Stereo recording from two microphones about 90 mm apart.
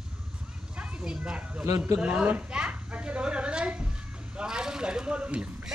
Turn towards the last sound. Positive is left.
turn(degrees=-10)  # may be behind; listen again after turning